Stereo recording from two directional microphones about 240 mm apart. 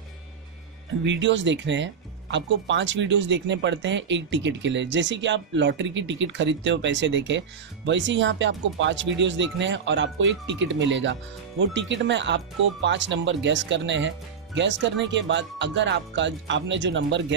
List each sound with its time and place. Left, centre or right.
1.0 s speech: right